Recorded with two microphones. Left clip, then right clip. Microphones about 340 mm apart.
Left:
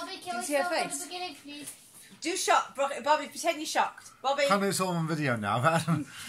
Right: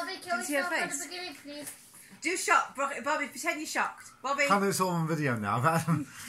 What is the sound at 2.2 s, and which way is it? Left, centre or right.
Speech, left.